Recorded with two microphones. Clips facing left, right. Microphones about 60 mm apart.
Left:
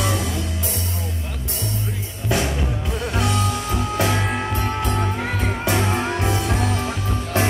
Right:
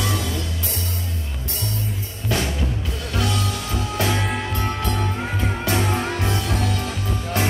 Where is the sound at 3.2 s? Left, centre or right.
Left.